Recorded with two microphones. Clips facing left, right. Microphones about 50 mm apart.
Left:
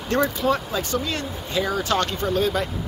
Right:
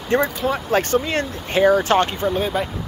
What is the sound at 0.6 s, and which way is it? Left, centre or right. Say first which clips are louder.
Speech: right 7 dB; right.